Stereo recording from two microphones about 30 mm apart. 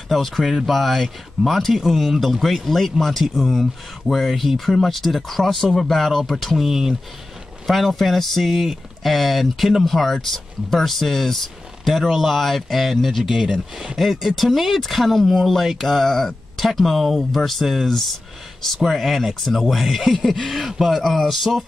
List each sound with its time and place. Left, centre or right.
0.4 s speech: centre
6.4 s speech: centre
7.8 s speech: centre
11.9 s speech: centre
13.3 s speech: right
13.9 s speech: centre
14.3 s speech: centre
16.6 s speech: centre